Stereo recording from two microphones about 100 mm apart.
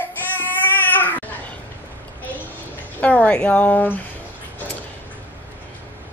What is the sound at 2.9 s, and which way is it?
A woman's voice, 15° left (ahead or behind).